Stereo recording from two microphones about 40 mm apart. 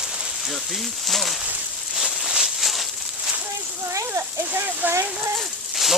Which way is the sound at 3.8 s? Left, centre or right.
Right.